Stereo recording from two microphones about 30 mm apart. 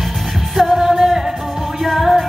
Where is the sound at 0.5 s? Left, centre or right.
Centre.